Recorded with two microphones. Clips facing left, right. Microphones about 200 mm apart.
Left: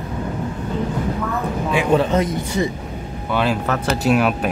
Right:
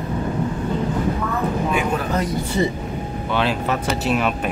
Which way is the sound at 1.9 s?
25° left (ahead or behind).